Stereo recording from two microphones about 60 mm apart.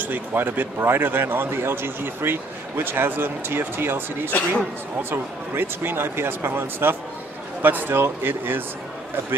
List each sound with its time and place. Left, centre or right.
0.0 s speech: right
4.3 s speech: left
5.1 s speech: right